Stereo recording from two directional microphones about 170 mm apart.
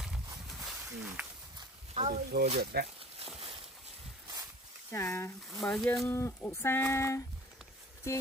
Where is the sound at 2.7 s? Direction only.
70° right (ahead or behind).